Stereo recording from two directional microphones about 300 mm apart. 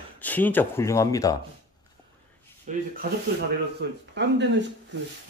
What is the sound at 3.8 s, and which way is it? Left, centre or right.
Speech, right.